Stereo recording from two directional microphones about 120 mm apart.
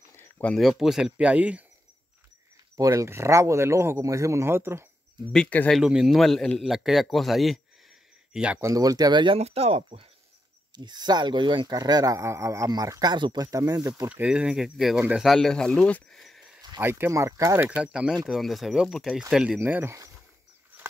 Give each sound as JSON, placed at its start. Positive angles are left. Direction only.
{"t": 0.1, "sound": "a sound", "side_deg": 20}
{"t": 0.5, "sound": "speech", "side_deg": 0}
{"t": 2.8, "sound": "speech", "side_deg": -25}
{"t": 5.3, "sound": "speech", "side_deg": 10}
{"t": 5.8, "sound": "speech", "side_deg": -5}
{"t": 8.5, "sound": "speech", "side_deg": -25}
{"t": 9.4, "sound": "speech", "side_deg": -60}
{"t": 10.7, "sound": "speech", "side_deg": -35}
{"t": 14.0, "sound": "speech", "side_deg": -10}
{"t": 16.8, "sound": "speech", "side_deg": -20}
{"t": 17.6, "sound": "speech", "side_deg": -10}
{"t": 19.6, "sound": "speech", "side_deg": -20}